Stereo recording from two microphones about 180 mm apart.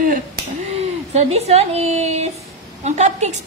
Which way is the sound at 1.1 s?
35° right (ahead or behind).